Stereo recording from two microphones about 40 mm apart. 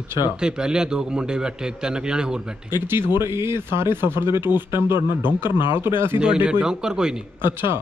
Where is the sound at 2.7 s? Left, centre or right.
Right.